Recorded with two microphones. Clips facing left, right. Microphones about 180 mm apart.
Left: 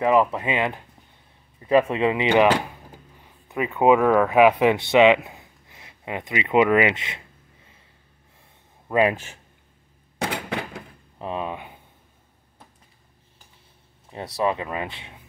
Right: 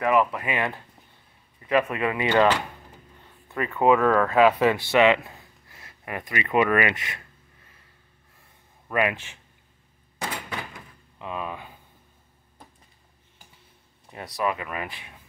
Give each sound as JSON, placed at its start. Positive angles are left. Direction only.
{"t": 0.0, "sound": "speech", "side_deg": 25}
{"t": 8.8, "sound": "a man's voice", "side_deg": 25}
{"t": 9.1, "sound": "speech", "side_deg": 40}
{"t": 10.1, "sound": "a sound", "side_deg": 65}
{"t": 11.1, "sound": "speech", "side_deg": 30}
{"t": 14.1, "sound": "speech", "side_deg": 30}